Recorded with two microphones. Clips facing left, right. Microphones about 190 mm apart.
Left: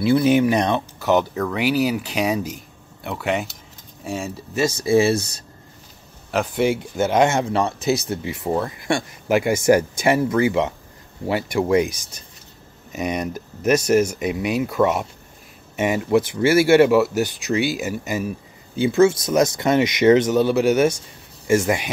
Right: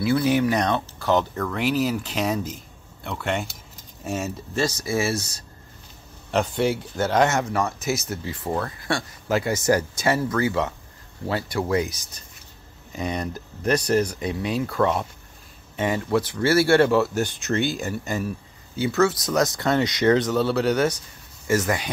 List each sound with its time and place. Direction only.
0.0 s speech: 25° left (ahead or behind)
1.3 s speech: 5° left (ahead or behind)
4.7 s speech: 30° left (ahead or behind)
6.3 s speech: 10° left (ahead or behind)
6.7 s speech: 20° left (ahead or behind)
18.8 s speech: 25° left (ahead or behind)
20.7 s speech: 25° left (ahead or behind)